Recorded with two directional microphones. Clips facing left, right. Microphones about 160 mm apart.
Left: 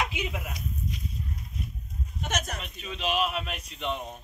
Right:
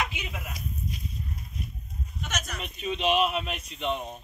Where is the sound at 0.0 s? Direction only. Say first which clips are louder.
Left 2 dB; 5° left (ahead or behind).